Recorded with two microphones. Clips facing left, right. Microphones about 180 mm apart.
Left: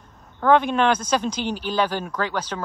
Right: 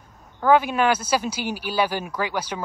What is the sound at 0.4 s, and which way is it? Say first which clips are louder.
Speech: left 1 dB; 5° right (ahead or behind).